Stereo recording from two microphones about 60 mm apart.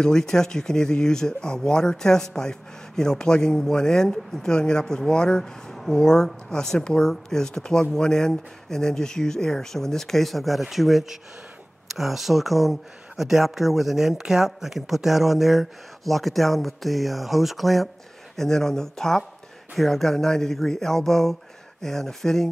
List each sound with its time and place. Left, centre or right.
0.0 s speech: centre